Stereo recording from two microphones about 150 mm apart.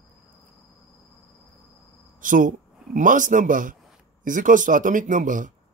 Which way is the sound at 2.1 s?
60° right (ahead or behind).